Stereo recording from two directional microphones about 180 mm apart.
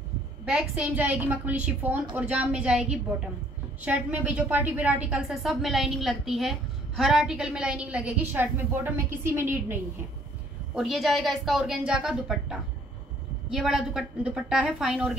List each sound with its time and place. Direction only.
0.5 s a woman's voice: 5° right (ahead or behind)
10.7 s a woman's voice: centre (ahead or behind)